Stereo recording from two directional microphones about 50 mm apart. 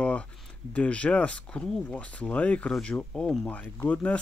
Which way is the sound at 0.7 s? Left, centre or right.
Left.